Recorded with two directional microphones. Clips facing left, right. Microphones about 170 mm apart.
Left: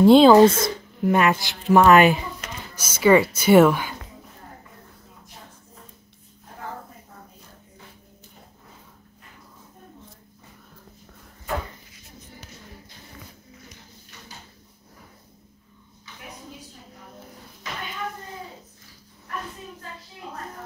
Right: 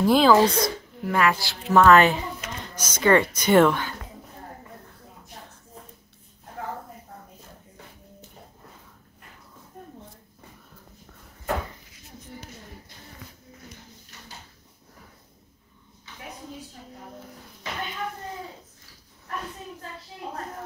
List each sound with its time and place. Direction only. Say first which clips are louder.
0.0 s speech: left 6 dB; 25° left (ahead or behind); by 3.9 s 10° left (ahead or behind)